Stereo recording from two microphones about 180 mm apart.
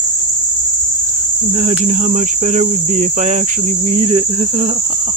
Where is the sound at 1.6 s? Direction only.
40° right (ahead or behind).